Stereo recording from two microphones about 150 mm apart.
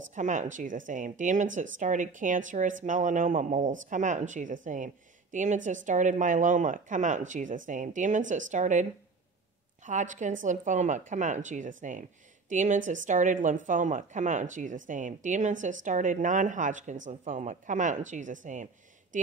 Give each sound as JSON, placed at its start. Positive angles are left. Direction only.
{"t": 0.1, "sound": "speech", "side_deg": -55}
{"t": 9.8, "sound": "speech", "side_deg": -55}